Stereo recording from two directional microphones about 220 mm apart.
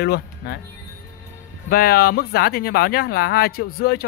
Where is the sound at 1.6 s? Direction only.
45° left (ahead or behind).